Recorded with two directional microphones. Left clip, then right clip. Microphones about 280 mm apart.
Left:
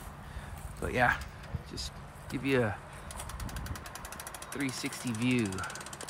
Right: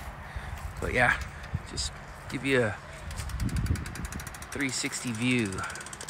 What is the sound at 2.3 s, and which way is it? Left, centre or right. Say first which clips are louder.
Speech: right 4 dB; centre.